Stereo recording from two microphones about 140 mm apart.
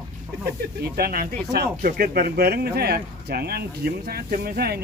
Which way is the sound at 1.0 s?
90° right.